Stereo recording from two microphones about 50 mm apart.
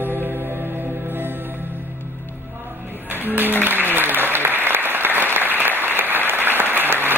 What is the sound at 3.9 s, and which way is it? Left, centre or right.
Applause, right.